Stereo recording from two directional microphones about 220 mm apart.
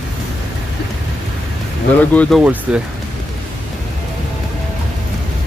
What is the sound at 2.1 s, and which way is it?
Speech, 5° left (ahead or behind).